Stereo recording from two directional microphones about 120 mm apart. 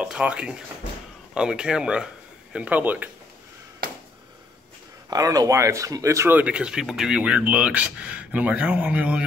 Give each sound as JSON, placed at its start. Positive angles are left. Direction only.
{"t": 0.0, "sound": "speech", "side_deg": -10}
{"t": 5.1, "sound": "speech", "side_deg": -30}
{"t": 6.3, "sound": "speech", "side_deg": -10}